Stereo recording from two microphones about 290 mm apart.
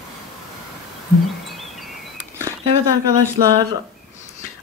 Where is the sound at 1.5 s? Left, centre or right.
Centre.